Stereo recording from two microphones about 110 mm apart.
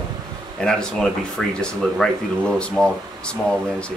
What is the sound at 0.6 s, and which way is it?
Speech, 5° left (ahead or behind).